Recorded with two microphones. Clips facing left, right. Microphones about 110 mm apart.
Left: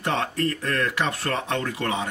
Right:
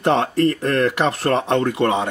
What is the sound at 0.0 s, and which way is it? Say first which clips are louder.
Speech: right 8 dB; 20° right (ahead or behind).